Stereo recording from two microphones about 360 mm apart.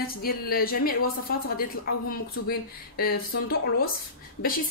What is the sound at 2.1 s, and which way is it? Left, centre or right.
A woman's voice, left.